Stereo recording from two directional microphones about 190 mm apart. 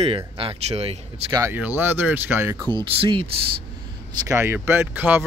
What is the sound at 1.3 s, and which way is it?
Speech, 15° right (ahead or behind).